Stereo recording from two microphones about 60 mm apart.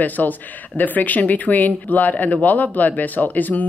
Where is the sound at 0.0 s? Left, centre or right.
Left.